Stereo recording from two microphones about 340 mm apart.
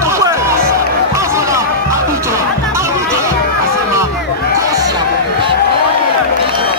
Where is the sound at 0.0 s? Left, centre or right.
Centre.